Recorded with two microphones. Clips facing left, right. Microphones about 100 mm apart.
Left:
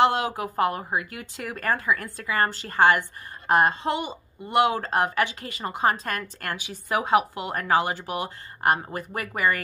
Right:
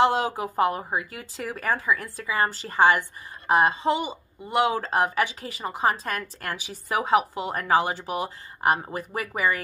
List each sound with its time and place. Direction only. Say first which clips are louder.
0.6 s a woman's voice: right 1 dB; 15° right (ahead or behind)
0.8 s speech: left 1 dB; centre (ahead or behind)